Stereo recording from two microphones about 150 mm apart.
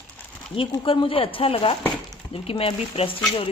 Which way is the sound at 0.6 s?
35° left (ahead or behind).